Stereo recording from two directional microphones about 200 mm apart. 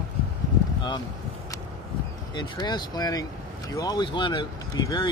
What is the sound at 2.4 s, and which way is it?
Speech, 20° left (ahead or behind).